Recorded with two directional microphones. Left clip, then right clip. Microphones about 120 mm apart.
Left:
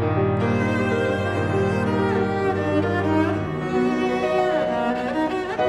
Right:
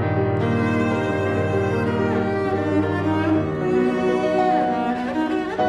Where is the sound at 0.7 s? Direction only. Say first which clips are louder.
Even; centre (ahead or behind).